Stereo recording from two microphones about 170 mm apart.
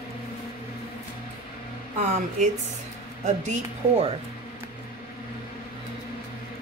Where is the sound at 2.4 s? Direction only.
45° right (ahead or behind).